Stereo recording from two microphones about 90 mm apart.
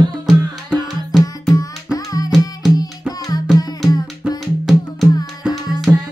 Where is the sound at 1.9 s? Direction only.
40° left (ahead or behind).